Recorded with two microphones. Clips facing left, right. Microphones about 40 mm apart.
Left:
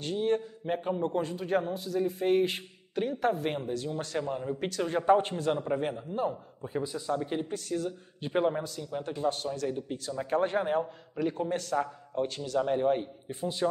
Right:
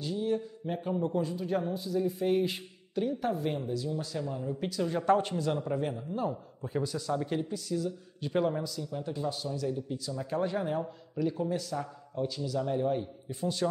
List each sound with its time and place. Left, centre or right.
0.0 s speech: left
0.7 s a man's voice: left
1.0 s a man's voice: left
1.7 s speech: left
2.0 s a man's voice: left
4.2 s a man's voice: left
5.9 s a man's voice: left
7.4 s a man's voice: left
8.2 s a man's voice: left
8.6 s a man's voice: left